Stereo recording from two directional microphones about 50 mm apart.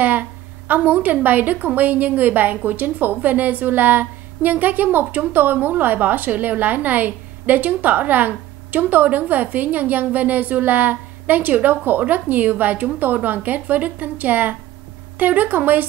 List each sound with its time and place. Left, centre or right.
0.0 s a woman's voice: right